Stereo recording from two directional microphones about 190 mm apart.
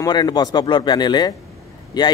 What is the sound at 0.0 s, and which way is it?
A man's voice, 20° left (ahead or behind).